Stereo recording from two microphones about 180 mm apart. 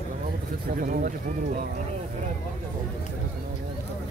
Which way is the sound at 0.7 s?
50° right (ahead or behind).